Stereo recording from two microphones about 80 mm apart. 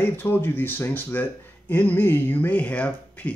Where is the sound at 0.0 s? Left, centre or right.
Left.